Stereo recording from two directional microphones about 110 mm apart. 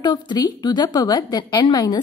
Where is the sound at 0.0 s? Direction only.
40° left (ahead or behind).